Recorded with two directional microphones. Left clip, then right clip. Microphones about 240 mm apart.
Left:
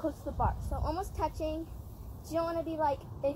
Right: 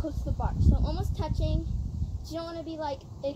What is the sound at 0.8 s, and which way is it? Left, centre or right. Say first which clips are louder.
A woman's voice: left 2 dB; centre.